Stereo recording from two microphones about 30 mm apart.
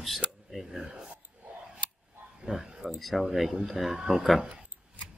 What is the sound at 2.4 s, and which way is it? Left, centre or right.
Speech, right.